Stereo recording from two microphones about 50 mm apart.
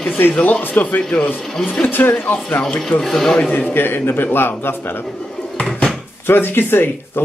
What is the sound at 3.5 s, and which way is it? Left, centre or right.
A man's voice, left.